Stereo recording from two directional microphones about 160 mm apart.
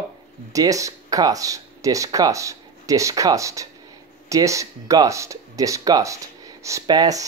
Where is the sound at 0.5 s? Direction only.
20° right (ahead or behind).